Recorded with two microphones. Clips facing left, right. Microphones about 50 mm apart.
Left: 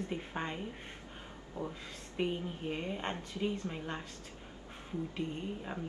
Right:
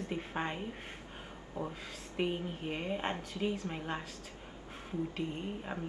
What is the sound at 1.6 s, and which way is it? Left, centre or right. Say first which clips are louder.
A woman's voice: right 1 dB; centre.